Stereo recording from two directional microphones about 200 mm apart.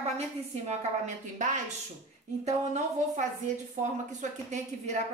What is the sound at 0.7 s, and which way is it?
A woman's voice, 35° right (ahead or behind).